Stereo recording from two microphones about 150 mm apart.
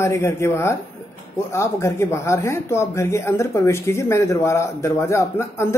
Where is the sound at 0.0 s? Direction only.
20° left (ahead or behind).